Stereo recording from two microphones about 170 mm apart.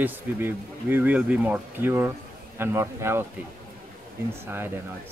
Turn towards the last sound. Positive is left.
turn(degrees=-15)  # may be behind; listen again after turning